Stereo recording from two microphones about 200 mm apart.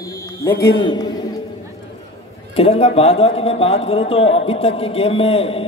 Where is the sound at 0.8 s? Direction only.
20° left (ahead or behind).